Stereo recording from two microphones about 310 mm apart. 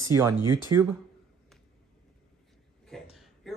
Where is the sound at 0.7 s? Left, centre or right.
Right.